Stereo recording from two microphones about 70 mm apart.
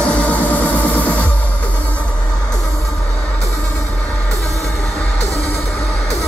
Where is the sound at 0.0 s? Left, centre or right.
Centre.